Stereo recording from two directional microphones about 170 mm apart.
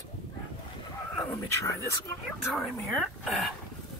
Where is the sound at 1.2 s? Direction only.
15° left (ahead or behind).